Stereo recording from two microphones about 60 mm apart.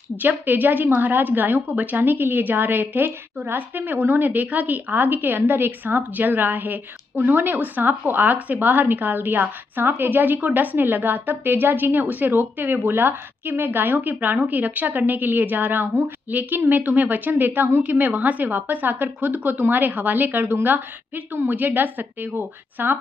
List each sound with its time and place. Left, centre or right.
0.2 s a woman's voice: right